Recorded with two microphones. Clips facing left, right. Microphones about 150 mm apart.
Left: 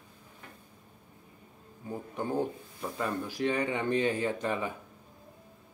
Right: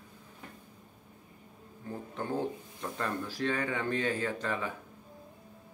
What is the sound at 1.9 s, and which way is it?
Speech, 10° left (ahead or behind).